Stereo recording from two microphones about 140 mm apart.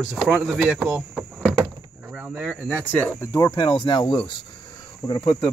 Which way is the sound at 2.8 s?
15° left (ahead or behind).